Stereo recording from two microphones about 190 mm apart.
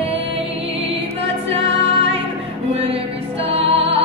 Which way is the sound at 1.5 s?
30° right (ahead or behind).